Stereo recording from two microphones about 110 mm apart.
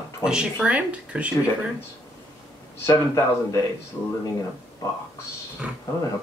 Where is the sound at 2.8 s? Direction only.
25° left (ahead or behind).